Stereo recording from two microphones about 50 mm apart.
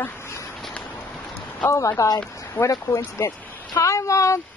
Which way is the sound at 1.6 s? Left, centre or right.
Left.